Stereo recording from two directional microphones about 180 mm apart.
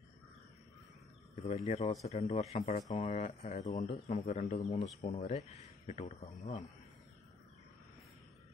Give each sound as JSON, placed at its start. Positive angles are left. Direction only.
{"t": 1.3, "sound": "speech", "side_deg": 35}